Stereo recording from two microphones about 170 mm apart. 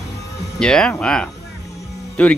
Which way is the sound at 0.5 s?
5° left (ahead or behind).